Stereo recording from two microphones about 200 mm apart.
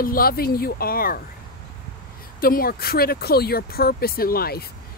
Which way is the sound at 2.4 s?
50° left (ahead or behind).